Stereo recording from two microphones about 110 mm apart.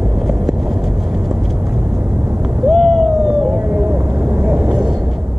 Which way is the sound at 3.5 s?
20° right (ahead or behind).